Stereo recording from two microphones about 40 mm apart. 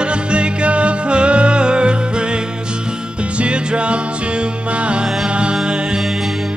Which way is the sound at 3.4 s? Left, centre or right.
Right.